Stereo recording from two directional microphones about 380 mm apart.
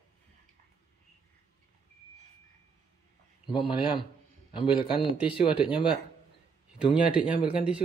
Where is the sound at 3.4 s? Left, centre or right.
Centre.